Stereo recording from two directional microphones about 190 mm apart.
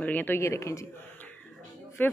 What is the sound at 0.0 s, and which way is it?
Speech, 10° left (ahead or behind).